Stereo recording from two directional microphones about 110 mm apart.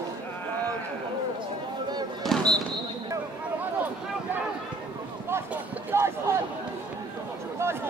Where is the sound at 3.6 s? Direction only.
15° right (ahead or behind).